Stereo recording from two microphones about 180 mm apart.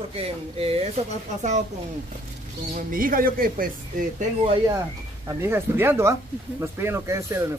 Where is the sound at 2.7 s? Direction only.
50° right (ahead or behind).